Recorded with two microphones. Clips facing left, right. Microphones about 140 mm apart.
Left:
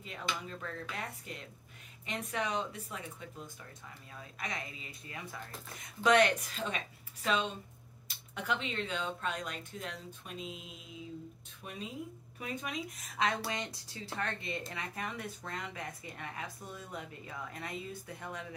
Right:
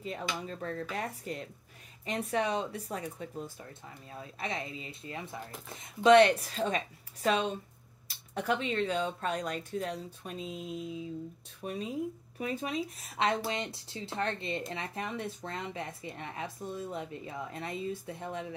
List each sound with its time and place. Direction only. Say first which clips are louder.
0.5 s speech: right 5 dB; 35° right (ahead or behind)